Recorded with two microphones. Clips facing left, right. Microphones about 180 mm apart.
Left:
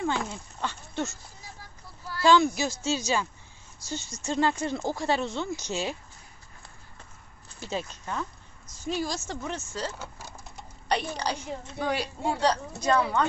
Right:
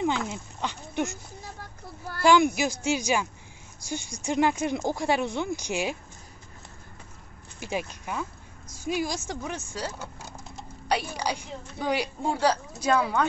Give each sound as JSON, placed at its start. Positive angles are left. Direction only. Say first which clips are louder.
{"t": 0.0, "sound": "speech", "louder": "right 2 dB", "side_deg": -15}
{"t": 2.2, "sound": "speech", "louder": "right 1 dB", "side_deg": -15}
{"t": 7.6, "sound": "speech", "louder": "right 2 dB", "side_deg": -15}